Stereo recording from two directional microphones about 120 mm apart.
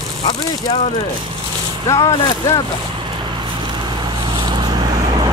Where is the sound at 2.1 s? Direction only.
30° left (ahead or behind).